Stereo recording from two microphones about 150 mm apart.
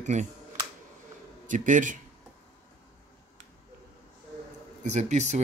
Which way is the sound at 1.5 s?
60° right (ahead or behind).